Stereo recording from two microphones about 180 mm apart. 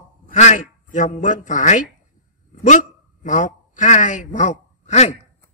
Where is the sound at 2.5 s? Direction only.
45° left (ahead or behind).